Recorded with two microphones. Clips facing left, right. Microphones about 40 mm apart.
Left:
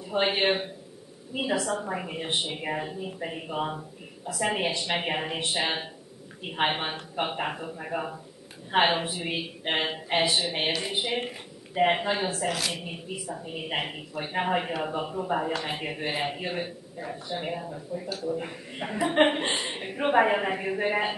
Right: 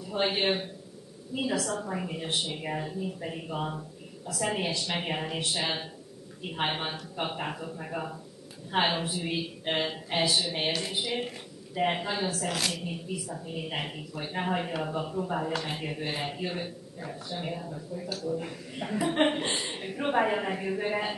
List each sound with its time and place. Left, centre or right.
0.0 s speech: left
12.4 s a woman's voice: centre
12.7 s speech: left